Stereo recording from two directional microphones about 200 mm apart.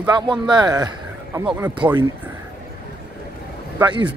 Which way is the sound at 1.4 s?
5° right (ahead or behind).